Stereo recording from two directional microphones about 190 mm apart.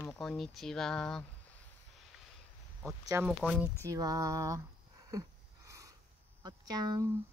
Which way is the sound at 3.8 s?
15° right (ahead or behind).